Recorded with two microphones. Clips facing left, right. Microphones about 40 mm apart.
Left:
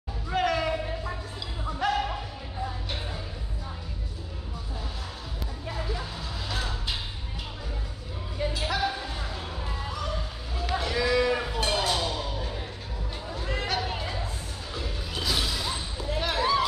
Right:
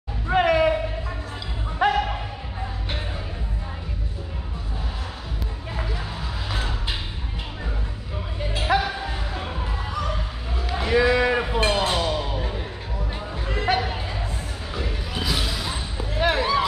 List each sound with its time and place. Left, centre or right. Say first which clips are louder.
0.3 s music: right 7 dB; right
1.8 s music: right 6 dB; right
6.5 s music: right 3 dB; right
8.5 s music: right 8 dB; right
10.7 s a sound: right 6 dB; right
14.7 s music: right 5 dB; right
15.2 s basketball bounce: right 1 dB; centre